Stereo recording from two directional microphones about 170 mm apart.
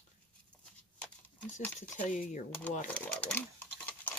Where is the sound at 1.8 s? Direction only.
45° left (ahead or behind).